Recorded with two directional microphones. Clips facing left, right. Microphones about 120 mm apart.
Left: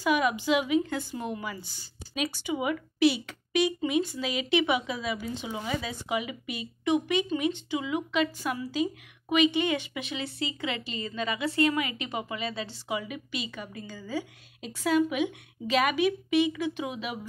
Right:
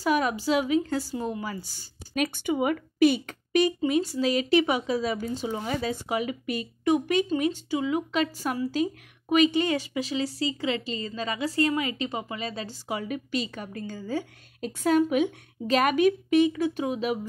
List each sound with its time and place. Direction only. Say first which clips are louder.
0.0 s a woman's voice: right 1 dB; 40° right (ahead or behind)